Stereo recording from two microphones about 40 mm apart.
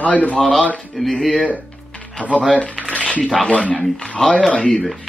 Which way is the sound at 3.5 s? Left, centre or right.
Left.